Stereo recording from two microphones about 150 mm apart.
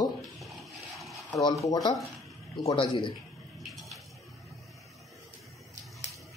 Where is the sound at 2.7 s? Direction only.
35° left (ahead or behind).